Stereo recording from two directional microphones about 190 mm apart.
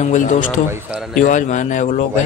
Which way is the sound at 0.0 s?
40° left (ahead or behind).